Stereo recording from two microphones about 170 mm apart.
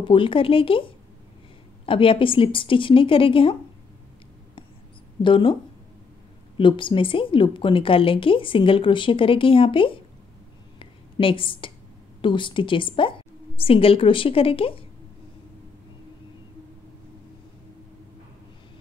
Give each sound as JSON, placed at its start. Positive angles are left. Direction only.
{"t": 0.0, "sound": "a woman's voice", "side_deg": 30}
{"t": 5.2, "sound": "a woman's voice", "side_deg": 30}
{"t": 6.6, "sound": "a woman's voice", "side_deg": 30}
{"t": 10.8, "sound": "a sound", "side_deg": 30}
{"t": 12.2, "sound": "a woman's voice", "side_deg": 30}